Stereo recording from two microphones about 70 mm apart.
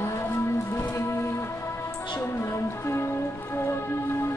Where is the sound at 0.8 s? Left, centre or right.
Left.